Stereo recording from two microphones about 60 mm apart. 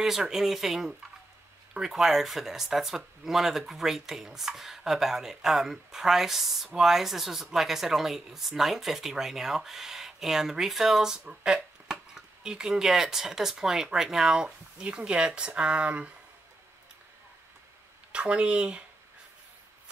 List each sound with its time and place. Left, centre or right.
0.0 s speech: centre; by 16.1 s right
18.1 s speech: centre